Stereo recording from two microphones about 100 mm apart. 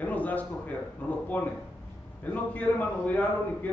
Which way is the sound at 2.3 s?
15° left (ahead or behind).